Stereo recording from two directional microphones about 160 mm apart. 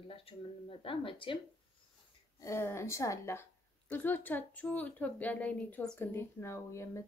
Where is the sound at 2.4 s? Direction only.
15° left (ahead or behind).